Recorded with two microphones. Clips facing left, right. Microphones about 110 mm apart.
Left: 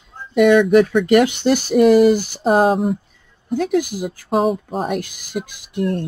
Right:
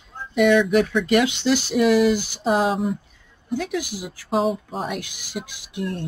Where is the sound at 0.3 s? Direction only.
50° left (ahead or behind).